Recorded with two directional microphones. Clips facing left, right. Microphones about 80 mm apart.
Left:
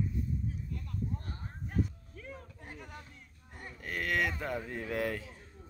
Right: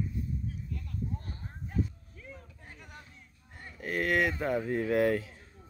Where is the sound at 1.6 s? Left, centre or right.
Left.